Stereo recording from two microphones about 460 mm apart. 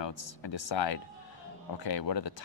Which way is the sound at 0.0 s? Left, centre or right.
Left.